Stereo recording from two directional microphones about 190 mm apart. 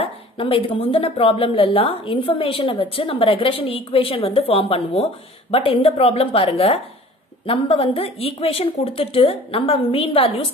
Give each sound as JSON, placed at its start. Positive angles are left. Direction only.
{"t": 0.0, "sound": "a woman's voice", "side_deg": 30}